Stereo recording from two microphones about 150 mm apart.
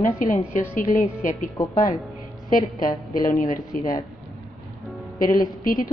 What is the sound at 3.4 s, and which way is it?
Speech, 65° left (ahead or behind).